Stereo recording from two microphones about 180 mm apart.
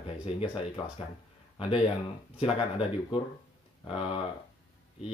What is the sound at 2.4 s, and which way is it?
Speech, 30° left (ahead or behind).